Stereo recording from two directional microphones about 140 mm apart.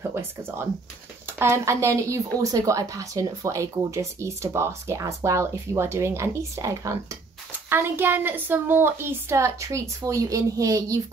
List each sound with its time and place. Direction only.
0.0 s a woman's voice: 15° right (ahead or behind)